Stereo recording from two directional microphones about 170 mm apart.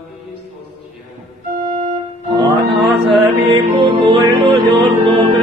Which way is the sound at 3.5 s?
35° right (ahead or behind).